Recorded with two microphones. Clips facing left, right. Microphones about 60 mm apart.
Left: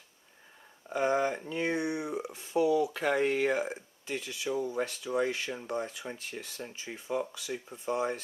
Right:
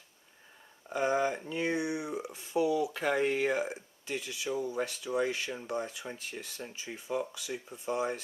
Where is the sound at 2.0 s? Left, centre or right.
Left.